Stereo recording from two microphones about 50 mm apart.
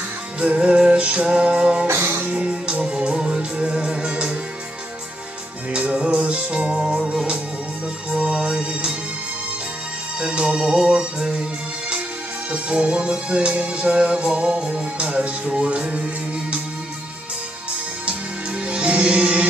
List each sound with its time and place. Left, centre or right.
0.4 s music: right
5.7 s music: right
10.2 s music: centre
12.4 s music: right
18.7 s music: right